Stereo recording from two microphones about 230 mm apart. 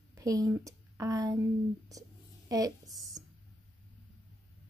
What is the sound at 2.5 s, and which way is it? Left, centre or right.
Speech, centre.